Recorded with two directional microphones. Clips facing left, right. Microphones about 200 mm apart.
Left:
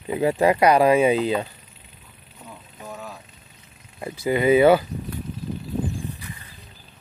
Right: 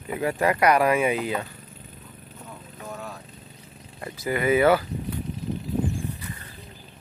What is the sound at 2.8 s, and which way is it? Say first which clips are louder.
Vehicle: even; centre (ahead or behind).